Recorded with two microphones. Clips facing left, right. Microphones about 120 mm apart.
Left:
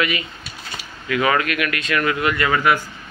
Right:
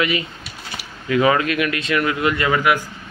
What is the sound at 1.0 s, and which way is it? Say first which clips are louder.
A man's voice: right 3 dB; 25° right (ahead or behind).